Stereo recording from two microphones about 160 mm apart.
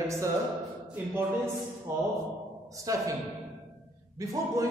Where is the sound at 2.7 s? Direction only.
20° right (ahead or behind).